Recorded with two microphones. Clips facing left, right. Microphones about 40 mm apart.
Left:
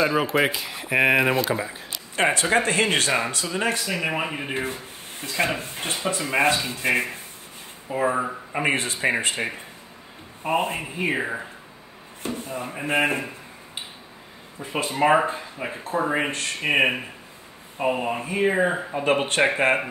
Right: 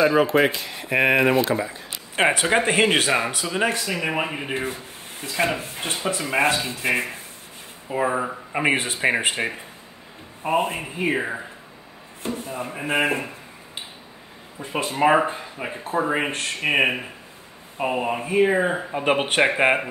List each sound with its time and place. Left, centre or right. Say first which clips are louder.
0.0 s speech: right 3 dB; centre
2.1 s speech: right 1 dB; centre
3.7 s speech: right 1 dB; centre
8.6 s speech: right 2 dB; centre
10.4 s speech: right 1 dB; centre
14.6 s speech: right 1 dB; centre